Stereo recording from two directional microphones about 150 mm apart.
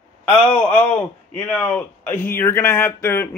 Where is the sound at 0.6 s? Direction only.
15° left (ahead or behind).